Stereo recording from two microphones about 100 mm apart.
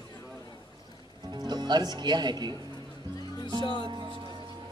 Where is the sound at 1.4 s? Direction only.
45° right (ahead or behind).